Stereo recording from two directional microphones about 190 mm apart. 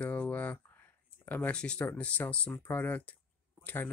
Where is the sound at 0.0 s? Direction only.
10° left (ahead or behind).